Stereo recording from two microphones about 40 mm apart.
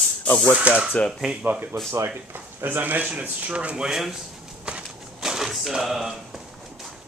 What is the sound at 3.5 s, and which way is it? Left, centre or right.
Speech, right.